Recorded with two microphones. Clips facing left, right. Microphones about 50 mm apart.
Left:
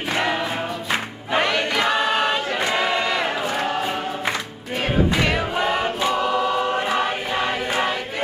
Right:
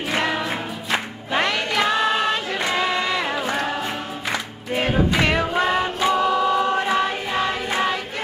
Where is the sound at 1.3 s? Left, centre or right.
Centre.